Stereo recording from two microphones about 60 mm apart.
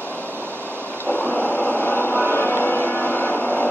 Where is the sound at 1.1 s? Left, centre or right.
Left.